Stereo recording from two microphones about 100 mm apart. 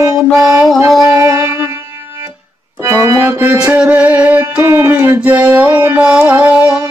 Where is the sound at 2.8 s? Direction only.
30° right (ahead or behind).